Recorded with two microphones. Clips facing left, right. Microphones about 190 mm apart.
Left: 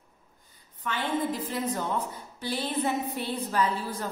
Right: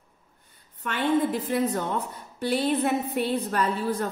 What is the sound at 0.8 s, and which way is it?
A woman's voice, 60° right (ahead or behind).